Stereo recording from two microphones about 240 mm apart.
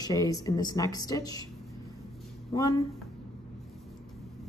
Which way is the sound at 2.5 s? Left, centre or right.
Centre.